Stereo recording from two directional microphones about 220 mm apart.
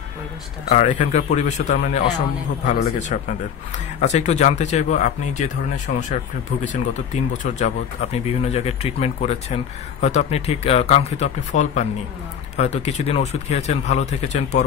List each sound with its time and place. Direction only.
0.7 s a man's voice: 30° left (ahead or behind)
7.4 s speech: 30° left (ahead or behind)